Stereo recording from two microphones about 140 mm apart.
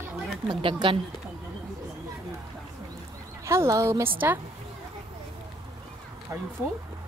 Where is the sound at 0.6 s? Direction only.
35° right (ahead or behind).